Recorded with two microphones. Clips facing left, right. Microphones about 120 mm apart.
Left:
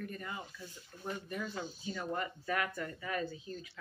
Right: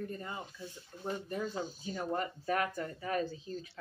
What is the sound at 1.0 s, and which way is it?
Speech, 35° right (ahead or behind).